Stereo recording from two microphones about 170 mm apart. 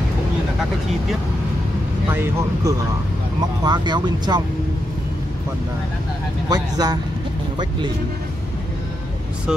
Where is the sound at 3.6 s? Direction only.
25° right (ahead or behind).